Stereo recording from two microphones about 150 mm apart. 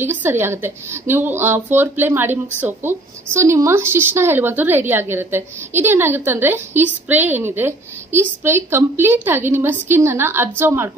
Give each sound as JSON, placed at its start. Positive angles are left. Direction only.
{"t": 0.0, "sound": "speech", "side_deg": -15}